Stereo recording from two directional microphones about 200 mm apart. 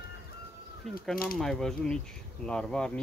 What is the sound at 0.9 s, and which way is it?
Speech, centre (ahead or behind).